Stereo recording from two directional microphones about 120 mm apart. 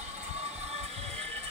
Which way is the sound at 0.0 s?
65° right (ahead or behind).